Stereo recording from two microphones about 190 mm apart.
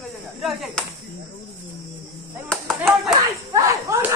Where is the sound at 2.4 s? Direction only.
5° left (ahead or behind).